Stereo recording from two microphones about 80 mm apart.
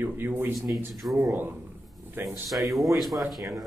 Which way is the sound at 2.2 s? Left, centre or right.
Right.